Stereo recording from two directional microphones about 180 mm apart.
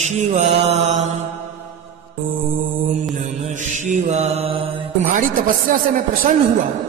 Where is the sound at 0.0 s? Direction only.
40° right (ahead or behind).